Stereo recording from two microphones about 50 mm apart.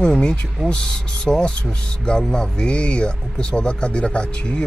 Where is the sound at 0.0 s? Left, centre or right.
Centre.